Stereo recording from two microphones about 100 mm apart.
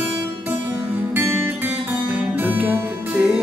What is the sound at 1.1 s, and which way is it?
Music, 20° right (ahead or behind).